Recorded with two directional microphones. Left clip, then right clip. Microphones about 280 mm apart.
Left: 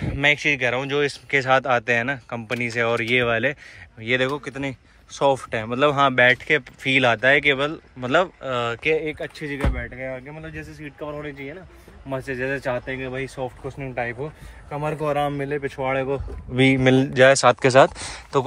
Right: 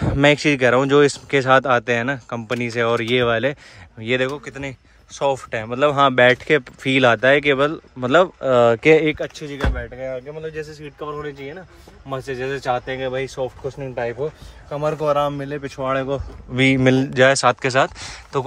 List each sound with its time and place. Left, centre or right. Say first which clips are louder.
0.2 s speech: right 4 dB; centre
10.0 s speech: right 5 dB; centre